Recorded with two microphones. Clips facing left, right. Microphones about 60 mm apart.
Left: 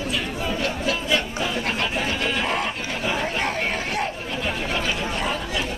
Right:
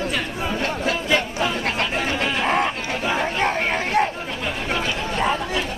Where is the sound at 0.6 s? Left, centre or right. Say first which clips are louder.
Right 3 dB; right.